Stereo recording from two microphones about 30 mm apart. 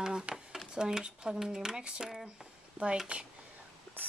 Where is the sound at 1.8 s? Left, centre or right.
Right.